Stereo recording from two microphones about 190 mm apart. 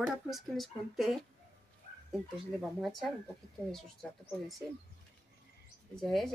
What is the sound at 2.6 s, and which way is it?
Speech, centre (ahead or behind).